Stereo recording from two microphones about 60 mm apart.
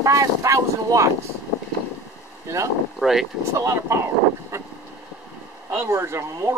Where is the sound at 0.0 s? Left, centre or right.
Right.